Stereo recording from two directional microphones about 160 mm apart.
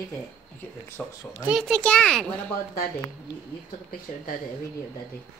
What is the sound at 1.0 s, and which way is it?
A child's voice, 5° left (ahead or behind).